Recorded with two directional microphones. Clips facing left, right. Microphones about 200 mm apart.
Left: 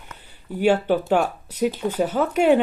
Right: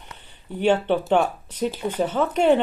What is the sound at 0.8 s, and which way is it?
Speech, 5° left (ahead or behind).